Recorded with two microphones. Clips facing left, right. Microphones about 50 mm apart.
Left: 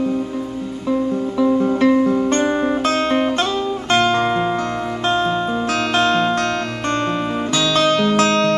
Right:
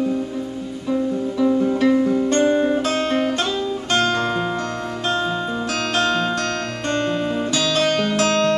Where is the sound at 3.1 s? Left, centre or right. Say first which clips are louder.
Left 3 dB; left.